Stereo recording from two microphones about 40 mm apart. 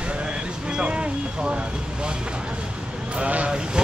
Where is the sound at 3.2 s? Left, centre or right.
Right.